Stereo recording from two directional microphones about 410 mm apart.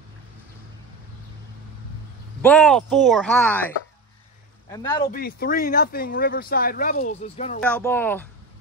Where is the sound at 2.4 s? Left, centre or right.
Centre.